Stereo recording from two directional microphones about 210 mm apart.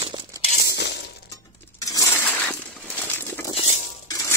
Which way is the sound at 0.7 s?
55° left (ahead or behind).